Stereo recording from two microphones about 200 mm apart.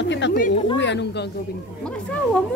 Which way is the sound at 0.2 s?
60° left (ahead or behind).